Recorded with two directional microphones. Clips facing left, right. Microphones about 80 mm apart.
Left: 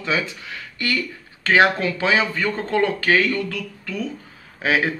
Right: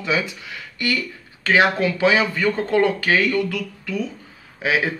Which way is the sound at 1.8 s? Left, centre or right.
Centre.